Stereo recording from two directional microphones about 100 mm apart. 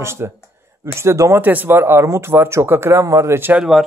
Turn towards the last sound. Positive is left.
turn(degrees=-5)  # may be behind; listen again after turning